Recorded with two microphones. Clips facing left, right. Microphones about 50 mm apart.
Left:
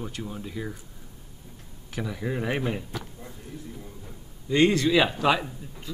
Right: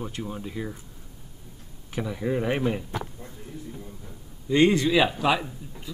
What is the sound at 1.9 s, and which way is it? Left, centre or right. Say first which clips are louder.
Speech: right 3 dB; centre.